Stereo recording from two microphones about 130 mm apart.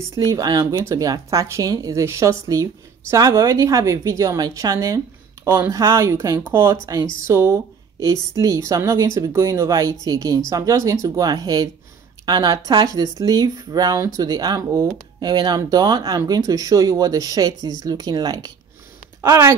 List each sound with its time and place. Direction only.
0.1 s speech: 25° right (ahead or behind)